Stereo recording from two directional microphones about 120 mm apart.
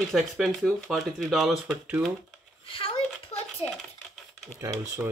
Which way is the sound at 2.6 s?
50° left (ahead or behind).